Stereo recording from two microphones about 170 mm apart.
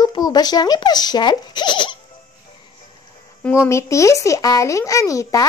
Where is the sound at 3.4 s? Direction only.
15° left (ahead or behind).